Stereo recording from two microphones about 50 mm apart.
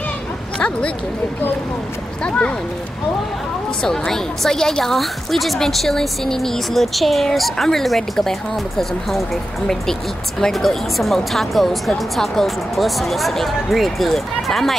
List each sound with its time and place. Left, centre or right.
0.6 s speech: left
2.2 s speech: left
3.8 s a woman's voice: centre